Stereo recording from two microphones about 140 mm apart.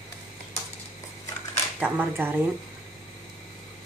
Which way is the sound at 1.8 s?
15° right (ahead or behind).